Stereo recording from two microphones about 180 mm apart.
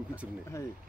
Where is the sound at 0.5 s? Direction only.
15° left (ahead or behind).